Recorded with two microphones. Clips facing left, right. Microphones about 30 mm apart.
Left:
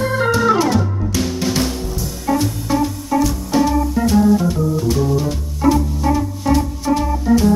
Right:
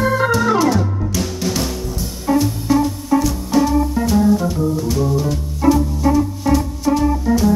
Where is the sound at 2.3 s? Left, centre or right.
Centre.